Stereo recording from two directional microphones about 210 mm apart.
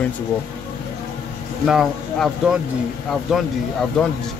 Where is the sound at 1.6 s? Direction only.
Centre (ahead or behind).